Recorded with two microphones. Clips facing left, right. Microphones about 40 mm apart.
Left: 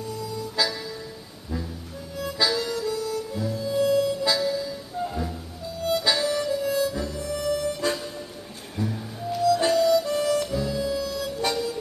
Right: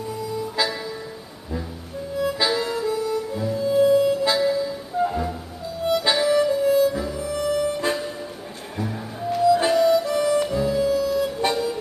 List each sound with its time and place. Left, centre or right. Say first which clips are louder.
0.1 s music: right 5 dB; centre
2.3 s harmonica: right 2 dB; right
5.9 s music: right 3 dB; right
6.3 s harmonica: right 7 dB; right
7.8 s music: right 3 dB; right
9.6 s harmonica: right 2 dB; right
10.0 s music: right 3 dB; centre